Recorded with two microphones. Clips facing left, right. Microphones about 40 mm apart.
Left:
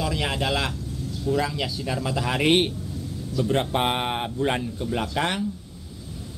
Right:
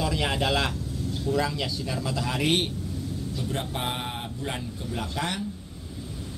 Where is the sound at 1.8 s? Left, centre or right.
Centre.